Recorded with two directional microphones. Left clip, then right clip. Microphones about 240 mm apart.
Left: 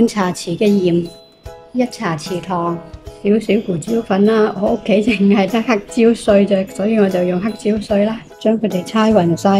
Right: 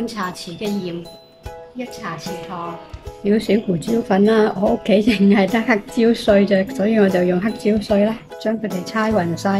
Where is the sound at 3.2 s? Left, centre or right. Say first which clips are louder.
Left 2 dB; centre.